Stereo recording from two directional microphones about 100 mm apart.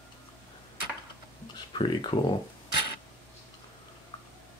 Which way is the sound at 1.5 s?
50° left (ahead or behind).